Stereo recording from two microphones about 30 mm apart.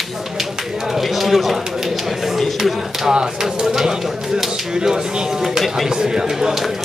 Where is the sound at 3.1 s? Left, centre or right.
Right.